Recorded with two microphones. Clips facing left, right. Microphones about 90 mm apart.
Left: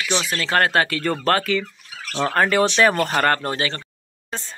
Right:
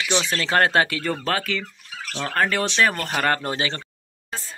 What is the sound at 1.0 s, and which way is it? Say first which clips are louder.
Speech: left 4 dB; 5° right (ahead or behind).